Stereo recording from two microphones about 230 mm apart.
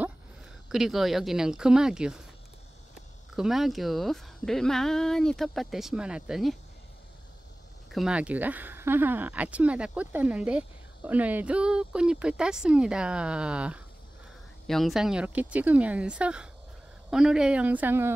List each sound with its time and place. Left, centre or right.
0.7 s speech: centre
3.3 s speech: centre
7.9 s speech: centre